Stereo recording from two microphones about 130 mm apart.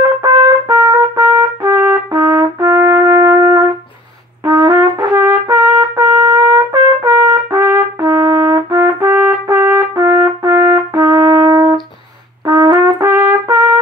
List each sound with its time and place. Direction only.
0.0 s trumpet: 25° right (ahead or behind)
4.5 s brass instrument: 30° right (ahead or behind)